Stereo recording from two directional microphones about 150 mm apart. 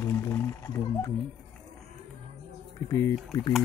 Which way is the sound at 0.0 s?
15° left (ahead or behind).